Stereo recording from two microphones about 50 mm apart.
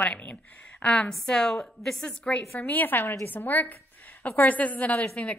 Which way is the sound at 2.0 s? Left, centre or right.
Left.